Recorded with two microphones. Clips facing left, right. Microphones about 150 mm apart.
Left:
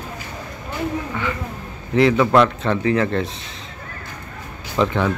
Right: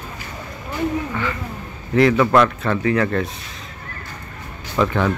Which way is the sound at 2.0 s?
20° left (ahead or behind).